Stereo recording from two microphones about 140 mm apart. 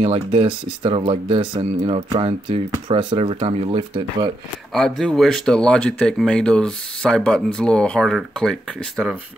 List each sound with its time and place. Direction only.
0.0 s speech: 45° right (ahead or behind)
4.7 s speech: centre (ahead or behind)